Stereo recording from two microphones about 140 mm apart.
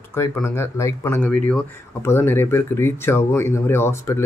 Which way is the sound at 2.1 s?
15° left (ahead or behind).